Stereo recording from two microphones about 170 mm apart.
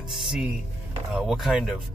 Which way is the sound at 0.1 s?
Centre (ahead or behind).